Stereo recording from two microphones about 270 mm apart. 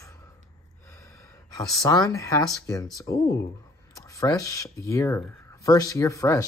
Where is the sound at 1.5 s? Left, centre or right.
Centre.